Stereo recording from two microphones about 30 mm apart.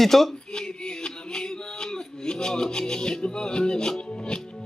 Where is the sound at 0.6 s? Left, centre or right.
Left.